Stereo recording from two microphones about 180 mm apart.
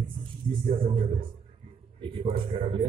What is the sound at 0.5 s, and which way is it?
Speech, 30° right (ahead or behind).